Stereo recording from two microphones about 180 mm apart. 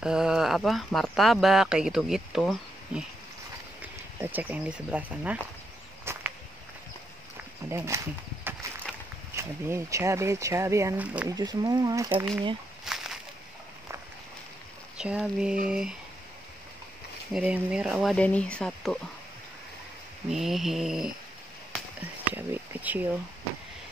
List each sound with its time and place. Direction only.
0.0 s speech: 5° right (ahead or behind)
6.1 s walk: 15° right (ahead or behind)
7.7 s speech: 15° right (ahead or behind)
8.6 s a sound: 15° right (ahead or behind)
9.4 s speech: 15° right (ahead or behind)
12.8 s a sound: 5° right (ahead or behind)
15.0 s speech: 5° right (ahead or behind)
17.3 s speech: 5° right (ahead or behind)
20.2 s speech: centre (ahead or behind)